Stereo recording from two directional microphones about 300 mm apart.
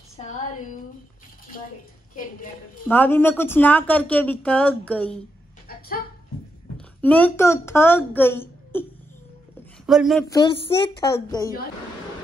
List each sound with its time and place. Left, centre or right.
0.2 s a sound: left
2.9 s speech: centre
5.7 s a sound: left
7.0 s speech: centre
9.8 s speech: centre
10.3 s speech: centre